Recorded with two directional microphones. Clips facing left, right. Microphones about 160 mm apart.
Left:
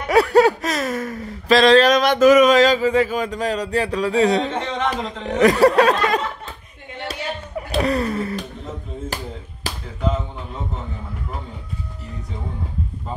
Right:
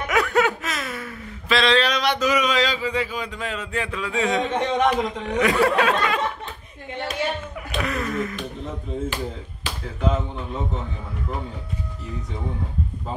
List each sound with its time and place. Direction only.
0.0 s speech: 35° left (ahead or behind)
4.6 s speech: 15° right (ahead or behind)
5.3 s speech: 40° left (ahead or behind)
7.1 s a sound: 35° left (ahead or behind)